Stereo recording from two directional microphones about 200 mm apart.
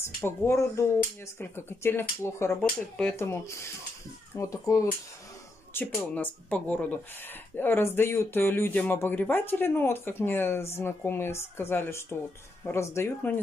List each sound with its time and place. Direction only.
0.0 s speech: 15° left (ahead or behind)